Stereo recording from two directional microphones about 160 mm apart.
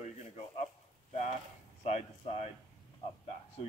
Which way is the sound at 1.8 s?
40° left (ahead or behind).